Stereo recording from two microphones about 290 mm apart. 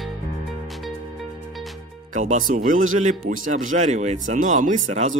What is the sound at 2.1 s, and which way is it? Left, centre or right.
Speech, right.